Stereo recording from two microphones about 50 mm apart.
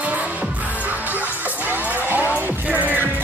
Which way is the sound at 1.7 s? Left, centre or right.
Right.